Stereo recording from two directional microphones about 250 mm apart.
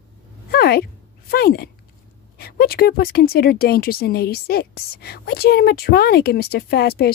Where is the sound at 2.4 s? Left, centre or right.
Left.